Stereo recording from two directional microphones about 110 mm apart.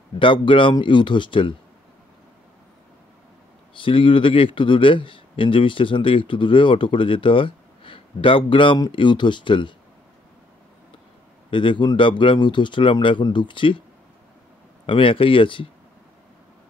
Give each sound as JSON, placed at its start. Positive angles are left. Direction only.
{"t": 0.2, "sound": "speech", "side_deg": 50}
{"t": 3.7, "sound": "speech", "side_deg": 50}
{"t": 11.5, "sound": "speech", "side_deg": 50}
{"t": 14.9, "sound": "speech", "side_deg": 50}